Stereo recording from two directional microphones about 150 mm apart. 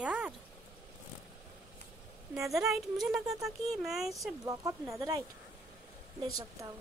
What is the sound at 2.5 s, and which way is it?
Speech, centre (ahead or behind).